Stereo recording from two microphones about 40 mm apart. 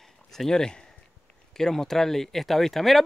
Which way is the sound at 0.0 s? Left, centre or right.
Centre.